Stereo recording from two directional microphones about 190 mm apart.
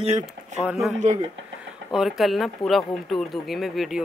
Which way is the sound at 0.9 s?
40° right (ahead or behind).